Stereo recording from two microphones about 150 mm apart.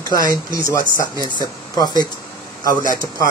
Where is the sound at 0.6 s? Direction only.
65° right (ahead or behind).